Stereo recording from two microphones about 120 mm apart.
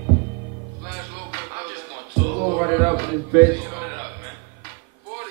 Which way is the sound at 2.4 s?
30° right (ahead or behind).